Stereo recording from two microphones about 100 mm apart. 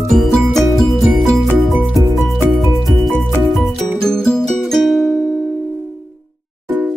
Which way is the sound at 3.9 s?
5° left (ahead or behind).